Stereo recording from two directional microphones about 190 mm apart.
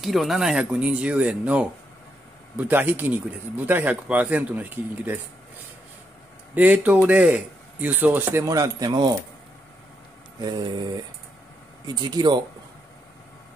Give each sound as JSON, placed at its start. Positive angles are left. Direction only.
{"t": 0.0, "sound": "speech", "side_deg": 0}
{"t": 6.5, "sound": "speech", "side_deg": -10}
{"t": 10.4, "sound": "speech", "side_deg": -20}
{"t": 11.8, "sound": "speech", "side_deg": -20}